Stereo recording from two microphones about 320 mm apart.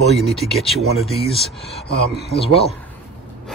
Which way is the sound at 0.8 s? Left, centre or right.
Right.